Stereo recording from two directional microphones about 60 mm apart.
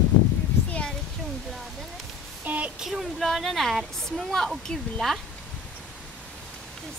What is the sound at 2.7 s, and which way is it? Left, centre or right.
Speech, centre.